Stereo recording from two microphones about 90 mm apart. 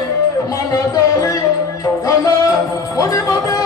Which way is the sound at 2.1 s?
40° left (ahead or behind).